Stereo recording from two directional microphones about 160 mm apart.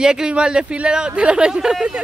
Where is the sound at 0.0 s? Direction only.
5° right (ahead or behind).